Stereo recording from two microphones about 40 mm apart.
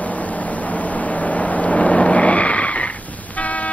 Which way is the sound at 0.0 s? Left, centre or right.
Left.